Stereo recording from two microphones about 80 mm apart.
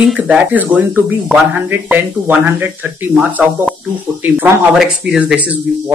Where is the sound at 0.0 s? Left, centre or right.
Centre.